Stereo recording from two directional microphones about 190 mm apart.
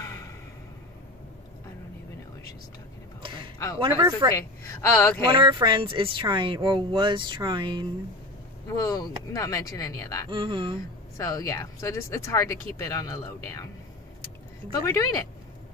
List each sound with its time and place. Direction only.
0.0 s a sound: 15° left (ahead or behind)
3.2 s a sound: 25° right (ahead or behind)
3.8 s speech: 25° right (ahead or behind)
4.4 s speech: 15° left (ahead or behind)
5.3 s speech: 25° right (ahead or behind)
8.6 s speech: 20° left (ahead or behind)
10.3 s speech: 25° right (ahead or behind)
11.1 s speech: 15° left (ahead or behind)
14.7 s speech: 15° left (ahead or behind)